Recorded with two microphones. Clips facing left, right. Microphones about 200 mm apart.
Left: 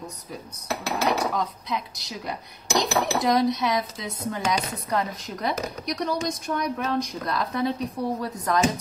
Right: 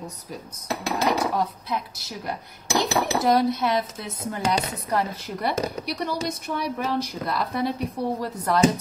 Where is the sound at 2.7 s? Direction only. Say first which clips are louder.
Right 1 dB; 5° right (ahead or behind).